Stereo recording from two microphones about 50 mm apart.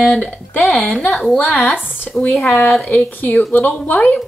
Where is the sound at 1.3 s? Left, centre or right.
Left.